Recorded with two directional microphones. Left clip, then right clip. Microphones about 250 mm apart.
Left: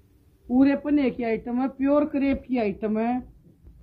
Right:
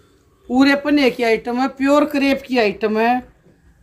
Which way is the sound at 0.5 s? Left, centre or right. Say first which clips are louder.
Right 7 dB; centre.